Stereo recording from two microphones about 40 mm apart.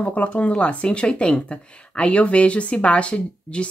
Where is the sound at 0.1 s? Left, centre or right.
Left.